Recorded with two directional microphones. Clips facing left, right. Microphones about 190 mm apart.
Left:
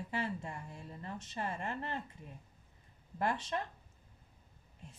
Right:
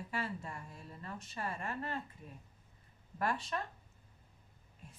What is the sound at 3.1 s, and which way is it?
Speech, 20° left (ahead or behind).